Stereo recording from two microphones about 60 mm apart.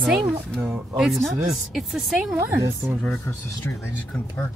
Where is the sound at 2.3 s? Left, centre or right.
Right.